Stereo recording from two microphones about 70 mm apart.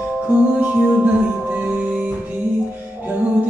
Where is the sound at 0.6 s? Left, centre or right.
Right.